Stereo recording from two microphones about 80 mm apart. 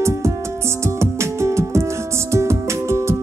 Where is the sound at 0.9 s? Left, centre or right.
Right.